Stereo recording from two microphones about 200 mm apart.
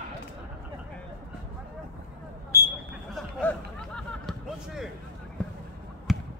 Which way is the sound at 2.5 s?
10° left (ahead or behind).